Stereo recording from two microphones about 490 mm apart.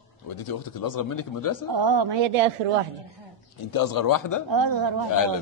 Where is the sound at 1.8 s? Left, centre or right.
Right.